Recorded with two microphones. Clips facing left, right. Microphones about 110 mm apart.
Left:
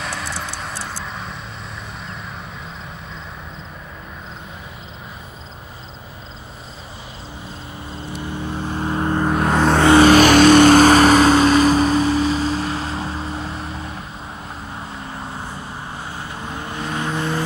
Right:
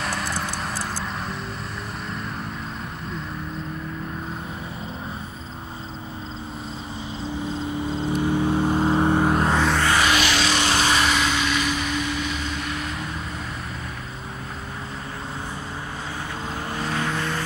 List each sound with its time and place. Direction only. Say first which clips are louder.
0.0 s vehicle: right 1 dB; centre (ahead or behind)
8.3 s vehicle: right 5 dB; 15° right (ahead or behind)
9.6 s music: left 6 dB; 50° left (ahead or behind)
10.0 s vehicle: left 12 dB; 45° left (ahead or behind)
16.9 s vehicle: left 4 dB; 20° left (ahead or behind)